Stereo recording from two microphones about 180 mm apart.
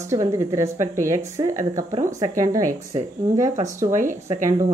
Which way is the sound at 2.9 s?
45° right (ahead or behind).